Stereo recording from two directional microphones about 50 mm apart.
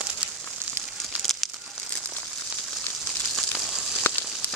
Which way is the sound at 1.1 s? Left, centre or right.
Centre.